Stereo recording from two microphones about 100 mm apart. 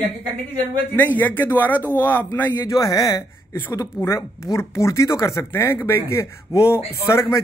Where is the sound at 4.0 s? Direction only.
25° left (ahead or behind).